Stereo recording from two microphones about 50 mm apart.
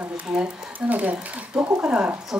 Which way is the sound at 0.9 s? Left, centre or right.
Right.